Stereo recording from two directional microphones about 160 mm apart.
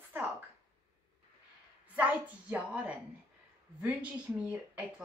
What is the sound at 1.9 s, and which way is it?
A woman's voice, 10° right (ahead or behind).